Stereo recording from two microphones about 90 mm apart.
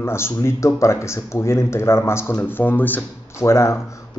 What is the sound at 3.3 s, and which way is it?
Speech, 30° left (ahead or behind).